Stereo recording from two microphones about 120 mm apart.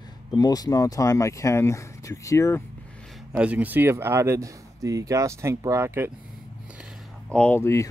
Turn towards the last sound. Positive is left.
turn(degrees=25)  # may be behind; listen again after turning